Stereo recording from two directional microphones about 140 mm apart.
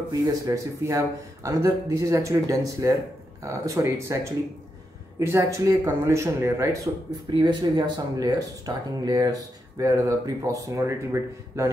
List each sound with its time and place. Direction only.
0.1 s a man's voice: 25° right (ahead or behind)
5.3 s a man's voice: 20° right (ahead or behind)
7.3 s a man's voice: 30° right (ahead or behind)